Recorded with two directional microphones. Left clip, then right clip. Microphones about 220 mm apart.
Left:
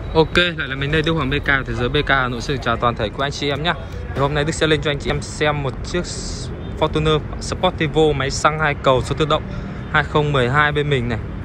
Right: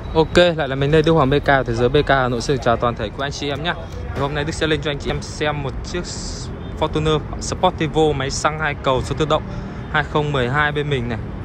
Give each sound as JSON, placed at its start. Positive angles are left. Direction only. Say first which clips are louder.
{"t": 0.1, "sound": "speech", "louder": "right 2 dB", "side_deg": -15}